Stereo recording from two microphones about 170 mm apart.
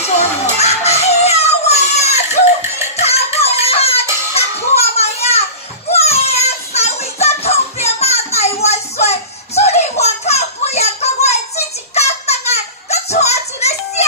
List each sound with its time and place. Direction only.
0.0 s music: 40° left (ahead or behind)
4.4 s children playing: 35° left (ahead or behind)
5.9 s music: 35° left (ahead or behind)
8.6 s a sound: 40° left (ahead or behind)